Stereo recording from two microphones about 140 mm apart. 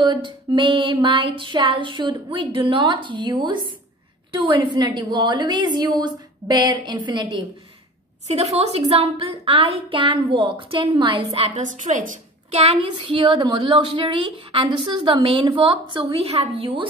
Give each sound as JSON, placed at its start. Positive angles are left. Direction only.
{"t": 0.0, "sound": "music", "side_deg": -35}
{"t": 8.3, "sound": "music", "side_deg": -50}
{"t": 11.6, "sound": "a woman's voice", "side_deg": -65}
{"t": 13.1, "sound": "music", "side_deg": -35}